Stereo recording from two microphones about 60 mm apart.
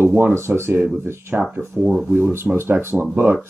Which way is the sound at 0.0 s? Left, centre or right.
Right.